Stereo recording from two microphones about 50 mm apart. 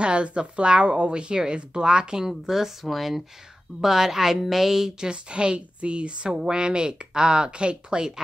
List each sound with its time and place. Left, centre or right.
0.0 s a woman's voice: right